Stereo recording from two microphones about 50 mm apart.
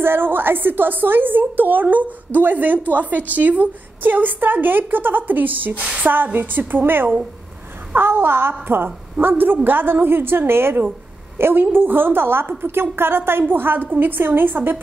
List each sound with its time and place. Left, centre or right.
0.0 s a woman's voice: right
5.8 s a sound: centre
6.0 s a woman's voice: right